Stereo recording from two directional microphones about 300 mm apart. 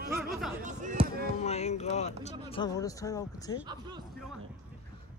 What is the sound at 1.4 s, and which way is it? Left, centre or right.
Speech, left.